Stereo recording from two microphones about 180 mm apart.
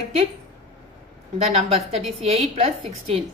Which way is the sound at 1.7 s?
35° right (ahead or behind).